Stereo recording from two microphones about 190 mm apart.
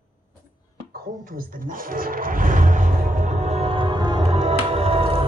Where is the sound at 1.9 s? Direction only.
50° right (ahead or behind).